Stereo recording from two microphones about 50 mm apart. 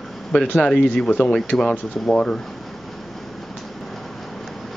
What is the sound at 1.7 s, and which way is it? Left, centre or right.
Speech, left.